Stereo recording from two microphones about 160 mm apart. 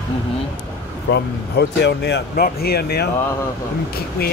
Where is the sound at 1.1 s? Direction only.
90° left.